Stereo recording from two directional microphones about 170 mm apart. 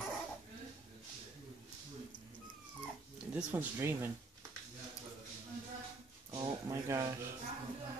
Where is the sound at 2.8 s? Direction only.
5° right (ahead or behind).